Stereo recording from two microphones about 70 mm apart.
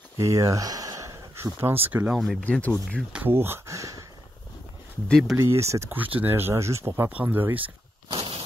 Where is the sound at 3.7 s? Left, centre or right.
Right.